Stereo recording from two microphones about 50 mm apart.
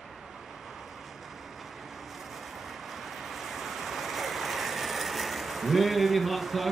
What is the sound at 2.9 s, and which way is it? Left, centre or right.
Vehicle, centre.